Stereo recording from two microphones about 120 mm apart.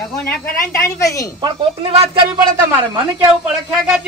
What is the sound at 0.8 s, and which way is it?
Speech, 25° left (ahead or behind).